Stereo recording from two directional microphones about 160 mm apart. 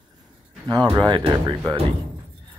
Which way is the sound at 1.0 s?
30° right (ahead or behind).